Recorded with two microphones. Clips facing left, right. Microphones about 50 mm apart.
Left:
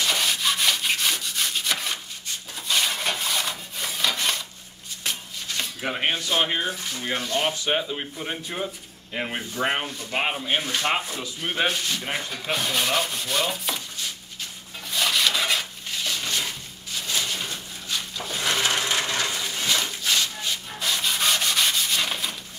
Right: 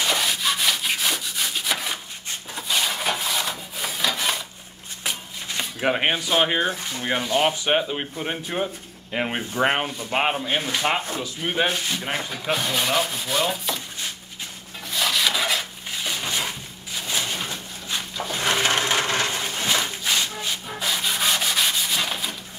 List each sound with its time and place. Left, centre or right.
0.1 s rub: centre
2.7 s wood: centre
5.8 s speech: right
6.1 s speech: centre
6.6 s speech: right; by 13.7 s centre
14.9 s rub: centre
16.0 s a sound: centre
18.3 s wood: right
18.8 s a sound: right
19.6 s a sound: right
20.0 s rub: centre